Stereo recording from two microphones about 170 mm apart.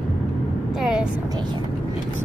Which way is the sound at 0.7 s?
5° right (ahead or behind).